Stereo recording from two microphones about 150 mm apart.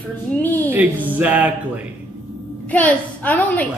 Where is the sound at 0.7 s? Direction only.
10° right (ahead or behind).